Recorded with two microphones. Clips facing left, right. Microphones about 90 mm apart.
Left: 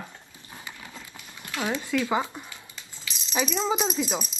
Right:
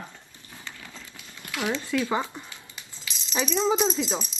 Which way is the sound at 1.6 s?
15° left (ahead or behind).